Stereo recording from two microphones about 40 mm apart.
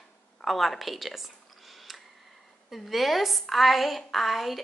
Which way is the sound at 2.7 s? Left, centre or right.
Centre.